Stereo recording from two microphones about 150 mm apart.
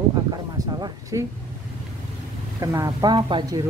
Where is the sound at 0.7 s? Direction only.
25° right (ahead or behind).